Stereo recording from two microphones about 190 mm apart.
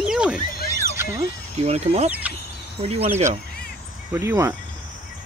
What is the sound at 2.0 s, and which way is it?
Cricket, 10° right (ahead or behind).